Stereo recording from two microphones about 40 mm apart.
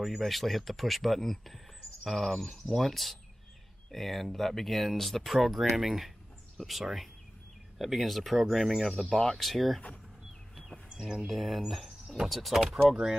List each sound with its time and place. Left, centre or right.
0.0 s speech: centre
10.5 s bird: centre
10.9 s speech: centre
11.2 s speech: centre